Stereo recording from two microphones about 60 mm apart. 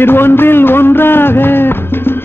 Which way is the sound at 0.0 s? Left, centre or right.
Left.